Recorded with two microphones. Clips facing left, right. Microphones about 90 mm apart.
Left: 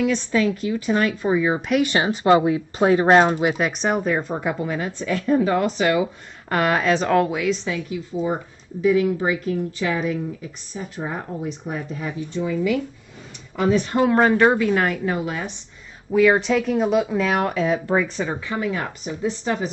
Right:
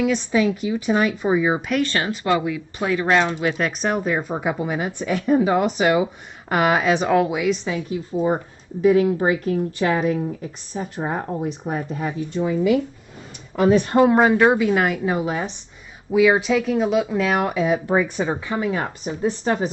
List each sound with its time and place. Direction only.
0.0 s a woman's voice: 10° right (ahead or behind)
1.7 s speech: 15° left (ahead or behind); by 3.4 s 35° left (ahead or behind)
3.5 s a woman's voice: 5° left (ahead or behind); by 7.7 s 15° right (ahead or behind)
7.9 s a woman's voice: 40° right (ahead or behind)
13.6 s speech: 45° right (ahead or behind)
14.0 s a woman's voice: 10° right (ahead or behind)
15.1 s speech: 25° right (ahead or behind)
16.1 s speech: 5° right (ahead or behind); by 18.9 s 25° right (ahead or behind)
19.0 s a woman's voice: 40° right (ahead or behind)